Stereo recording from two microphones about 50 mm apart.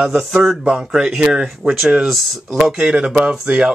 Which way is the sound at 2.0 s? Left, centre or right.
Centre.